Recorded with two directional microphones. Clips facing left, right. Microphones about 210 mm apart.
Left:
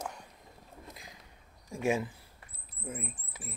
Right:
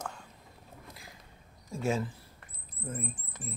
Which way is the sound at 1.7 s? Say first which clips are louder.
Left 1 dB; 15° left (ahead or behind).